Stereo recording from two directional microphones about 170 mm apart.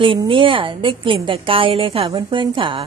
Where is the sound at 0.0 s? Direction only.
30° right (ahead or behind).